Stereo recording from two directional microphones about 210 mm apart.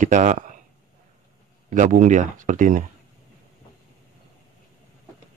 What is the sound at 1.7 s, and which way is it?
Speech, 35° right (ahead or behind).